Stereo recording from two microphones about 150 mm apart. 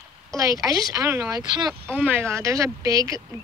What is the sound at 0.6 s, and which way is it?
Speech, 25° right (ahead or behind).